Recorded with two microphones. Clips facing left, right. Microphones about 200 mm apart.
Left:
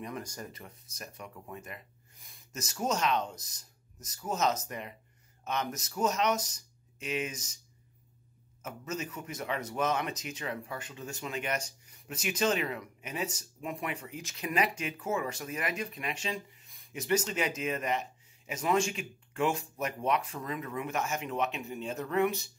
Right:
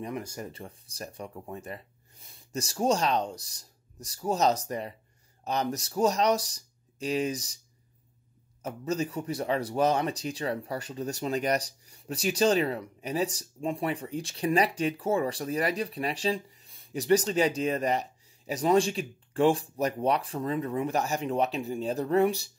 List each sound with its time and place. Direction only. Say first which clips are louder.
0.2 s speech: right 4 dB; 10° right (ahead or behind)
0.5 s speech: right 6 dB; 30° right (ahead or behind)
8.6 s speech: right 7 dB; 35° right (ahead or behind)